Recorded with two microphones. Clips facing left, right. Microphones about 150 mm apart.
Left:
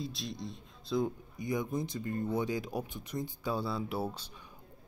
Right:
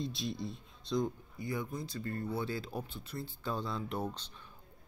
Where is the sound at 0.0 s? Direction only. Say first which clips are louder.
Right 2 dB; centre (ahead or behind).